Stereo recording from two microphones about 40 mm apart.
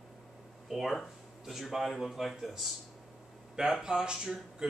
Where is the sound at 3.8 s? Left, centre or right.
Centre.